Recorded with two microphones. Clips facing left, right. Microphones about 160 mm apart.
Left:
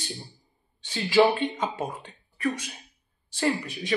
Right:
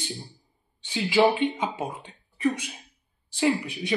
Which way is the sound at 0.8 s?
10° right (ahead or behind).